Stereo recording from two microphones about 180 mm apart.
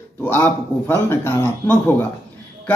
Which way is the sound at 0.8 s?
15° left (ahead or behind).